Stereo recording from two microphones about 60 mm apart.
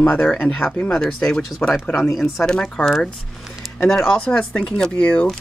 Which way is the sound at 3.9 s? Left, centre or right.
Centre.